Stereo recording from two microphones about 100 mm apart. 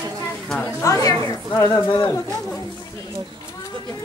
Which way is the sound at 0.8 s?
35° left (ahead or behind).